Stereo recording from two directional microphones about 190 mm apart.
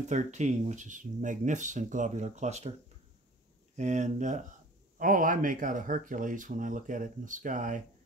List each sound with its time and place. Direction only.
0.1 s speech: 40° right (ahead or behind)
3.7 s speech: 40° right (ahead or behind)